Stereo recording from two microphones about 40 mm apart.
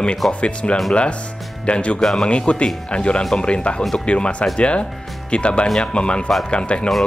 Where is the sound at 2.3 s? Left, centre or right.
Left.